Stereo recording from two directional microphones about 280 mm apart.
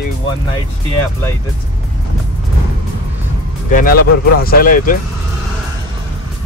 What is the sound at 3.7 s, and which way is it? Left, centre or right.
Speech, left.